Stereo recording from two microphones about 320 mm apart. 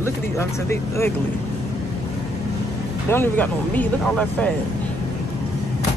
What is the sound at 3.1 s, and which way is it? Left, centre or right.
Speech, centre.